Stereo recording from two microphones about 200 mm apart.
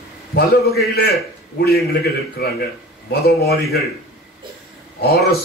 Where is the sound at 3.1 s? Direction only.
50° left (ahead or behind).